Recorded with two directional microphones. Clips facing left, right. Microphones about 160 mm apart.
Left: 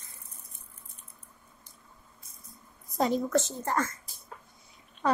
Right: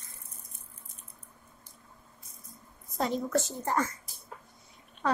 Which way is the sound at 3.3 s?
15° right (ahead or behind).